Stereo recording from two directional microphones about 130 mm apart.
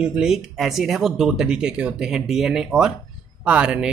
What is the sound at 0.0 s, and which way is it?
Speech, 5° right (ahead or behind).